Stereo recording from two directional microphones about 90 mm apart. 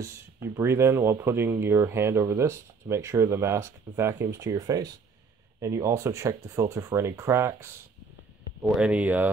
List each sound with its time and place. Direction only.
0.0 s speech: 30° right (ahead or behind)
8.6 s speech: 10° right (ahead or behind)